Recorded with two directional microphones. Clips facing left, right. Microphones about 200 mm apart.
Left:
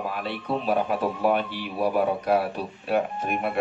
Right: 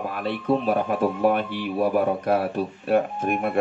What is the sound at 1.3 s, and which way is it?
Speech, 50° right (ahead or behind).